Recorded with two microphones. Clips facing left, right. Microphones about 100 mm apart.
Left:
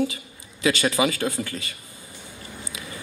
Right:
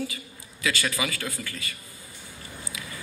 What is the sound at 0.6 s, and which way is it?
A man's voice, 25° left (ahead or behind).